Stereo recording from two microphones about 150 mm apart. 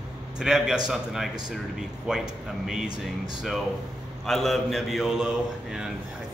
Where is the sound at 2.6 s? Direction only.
5° right (ahead or behind).